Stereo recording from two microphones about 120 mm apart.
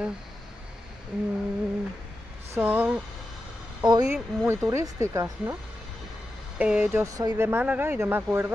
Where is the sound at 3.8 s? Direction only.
35° right (ahead or behind).